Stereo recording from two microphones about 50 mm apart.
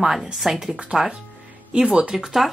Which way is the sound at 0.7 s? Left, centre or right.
Centre.